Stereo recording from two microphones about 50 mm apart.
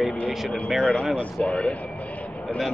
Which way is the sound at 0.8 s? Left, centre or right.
Centre.